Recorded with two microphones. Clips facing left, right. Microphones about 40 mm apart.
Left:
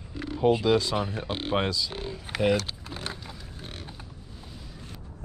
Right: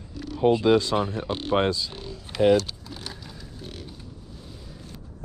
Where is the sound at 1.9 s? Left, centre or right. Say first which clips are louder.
Left 3 dB; left.